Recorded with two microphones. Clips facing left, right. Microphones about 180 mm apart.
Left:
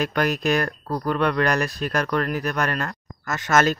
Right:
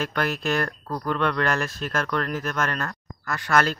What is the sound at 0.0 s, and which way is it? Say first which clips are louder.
Speech: left 4 dB; 15° left (ahead or behind).